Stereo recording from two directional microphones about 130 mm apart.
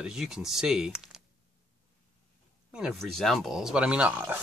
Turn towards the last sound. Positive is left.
turn(degrees=-10)  # may be behind; listen again after turning